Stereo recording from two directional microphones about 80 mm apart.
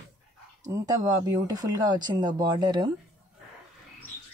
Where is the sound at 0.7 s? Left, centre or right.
Right.